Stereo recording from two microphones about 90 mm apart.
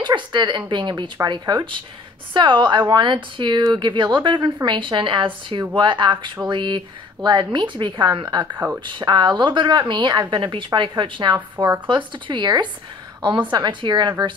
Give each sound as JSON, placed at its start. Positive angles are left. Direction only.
{"t": 0.0, "sound": "a woman's voice", "side_deg": -55}
{"t": 11.6, "sound": "speech", "side_deg": -45}
{"t": 11.9, "sound": "a woman's voice", "side_deg": -60}